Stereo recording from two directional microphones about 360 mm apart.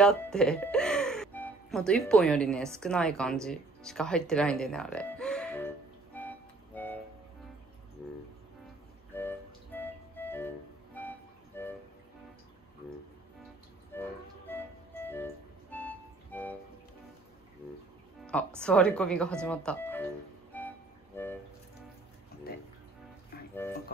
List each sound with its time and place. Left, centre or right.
0.0 s speech: centre
6.1 s music: centre
9.1 s music: centre
14.5 s music: centre
18.5 s speech: centre
20.5 s music: centre
23.3 s music: left